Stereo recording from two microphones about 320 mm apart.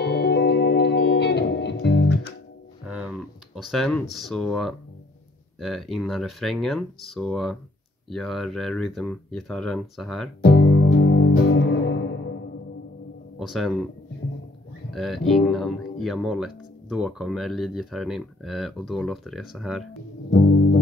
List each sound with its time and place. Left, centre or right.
0.0 s music: left
2.9 s a sound: centre
5.6 s speech: centre
10.4 s music: left
13.4 s speech: centre
14.9 s speech: centre